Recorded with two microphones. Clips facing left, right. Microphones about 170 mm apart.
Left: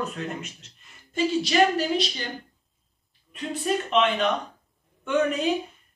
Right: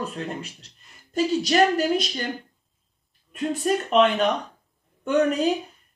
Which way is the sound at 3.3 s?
45° right (ahead or behind).